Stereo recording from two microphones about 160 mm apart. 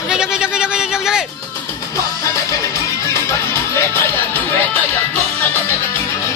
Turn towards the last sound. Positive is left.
turn(degrees=10)  # may be behind; listen again after turning